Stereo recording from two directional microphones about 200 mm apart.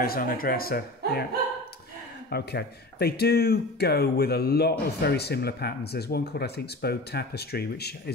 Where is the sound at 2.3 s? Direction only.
55° left (ahead or behind).